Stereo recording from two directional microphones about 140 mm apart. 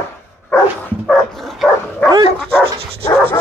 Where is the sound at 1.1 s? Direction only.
Centre (ahead or behind).